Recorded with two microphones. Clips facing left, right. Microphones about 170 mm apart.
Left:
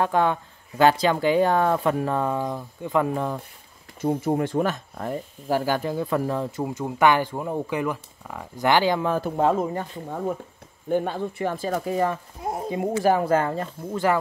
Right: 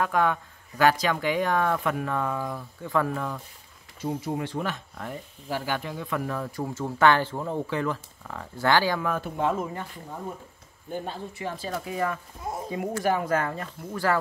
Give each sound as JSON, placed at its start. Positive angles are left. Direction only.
{"t": 0.0, "sound": "speech", "side_deg": 30}
{"t": 4.0, "sound": "speech", "side_deg": 50}
{"t": 9.2, "sound": "speech", "side_deg": 35}
{"t": 10.9, "sound": "speech", "side_deg": 60}